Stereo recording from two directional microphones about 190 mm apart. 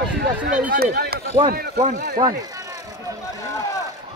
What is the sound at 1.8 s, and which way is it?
Speech, 40° right (ahead or behind).